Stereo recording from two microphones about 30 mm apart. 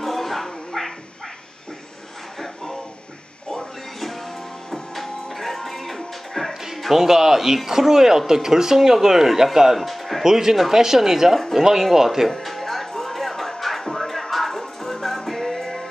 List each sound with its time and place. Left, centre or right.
0.0 s music: centre
2.3 s a sound: centre
3.4 s music: centre
6.5 s music: centre
7.1 s speech: centre
9.8 s music: centre
10.2 s speech: centre
12.3 s music: centre